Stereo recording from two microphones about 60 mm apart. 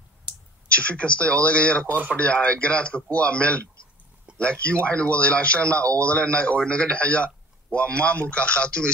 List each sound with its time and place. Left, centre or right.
0.7 s speech: centre